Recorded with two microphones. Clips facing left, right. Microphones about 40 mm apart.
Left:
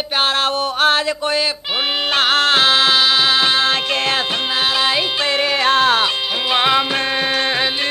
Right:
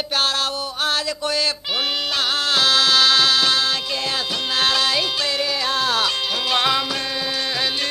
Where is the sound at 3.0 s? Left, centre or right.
Centre; by 4.5 s left.